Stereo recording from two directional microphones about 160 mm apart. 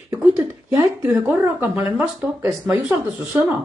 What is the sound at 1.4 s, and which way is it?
Speech, 15° right (ahead or behind).